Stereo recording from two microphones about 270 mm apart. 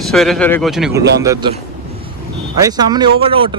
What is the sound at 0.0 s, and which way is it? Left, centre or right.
Speech, centre.